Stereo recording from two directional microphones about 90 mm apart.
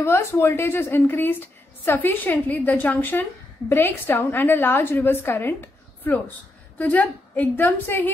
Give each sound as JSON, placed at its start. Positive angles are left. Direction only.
{"t": 0.0, "sound": "a woman's voice", "side_deg": 30}